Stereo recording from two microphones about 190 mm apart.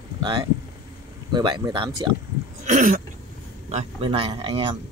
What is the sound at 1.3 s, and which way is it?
Speech, 25° right (ahead or behind).